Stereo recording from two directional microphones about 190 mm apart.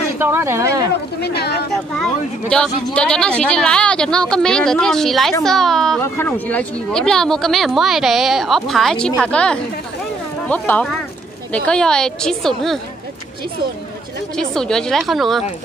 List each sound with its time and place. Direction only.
0.2 s speech: 10° right (ahead or behind)
1.2 s speech: 60° left (ahead or behind)
2.5 s speech: 5° left (ahead or behind)
14.3 s speech: 5° left (ahead or behind)